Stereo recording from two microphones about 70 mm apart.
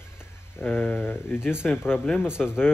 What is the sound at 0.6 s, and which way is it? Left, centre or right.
Speech, left.